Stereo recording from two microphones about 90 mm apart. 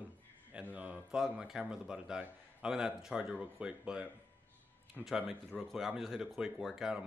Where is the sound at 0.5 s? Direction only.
15° right (ahead or behind).